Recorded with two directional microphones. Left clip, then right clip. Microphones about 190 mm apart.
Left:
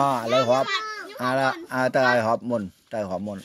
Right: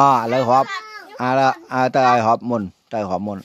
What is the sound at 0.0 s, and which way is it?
Speech, 40° right (ahead or behind).